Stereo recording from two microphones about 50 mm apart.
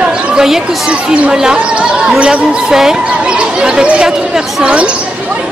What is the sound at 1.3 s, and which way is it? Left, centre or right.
Speech, centre.